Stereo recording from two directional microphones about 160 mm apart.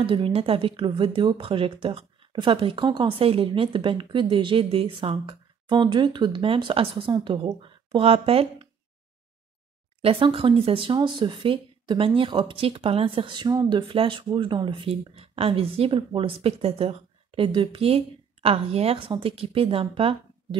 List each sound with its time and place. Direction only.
0.0 s speech: 35° right (ahead or behind)
10.0 s speech: 35° right (ahead or behind)